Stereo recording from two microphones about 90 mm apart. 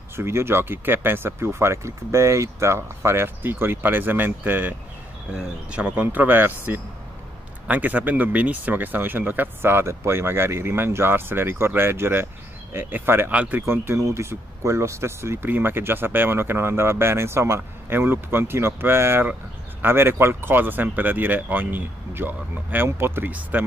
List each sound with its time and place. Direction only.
0.1 s speech: 30° right (ahead or behind)
13.3 s speech: 15° right (ahead or behind)
13.6 s speech: 30° right (ahead or behind)